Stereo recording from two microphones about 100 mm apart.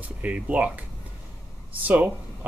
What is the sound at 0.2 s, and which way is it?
Speech, 15° right (ahead or behind).